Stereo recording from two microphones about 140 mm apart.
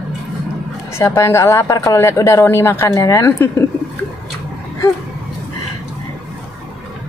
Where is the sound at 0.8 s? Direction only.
20° left (ahead or behind).